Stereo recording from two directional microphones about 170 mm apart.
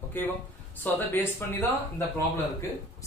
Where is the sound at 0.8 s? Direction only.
10° left (ahead or behind).